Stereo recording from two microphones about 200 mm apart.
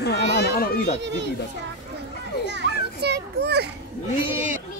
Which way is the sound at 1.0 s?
60° right (ahead or behind).